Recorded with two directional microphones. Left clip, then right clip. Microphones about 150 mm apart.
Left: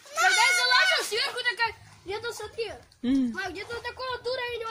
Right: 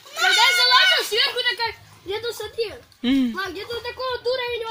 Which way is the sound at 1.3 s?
30° left (ahead or behind).